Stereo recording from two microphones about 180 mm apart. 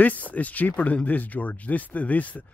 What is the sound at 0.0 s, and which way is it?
Speech, 10° left (ahead or behind).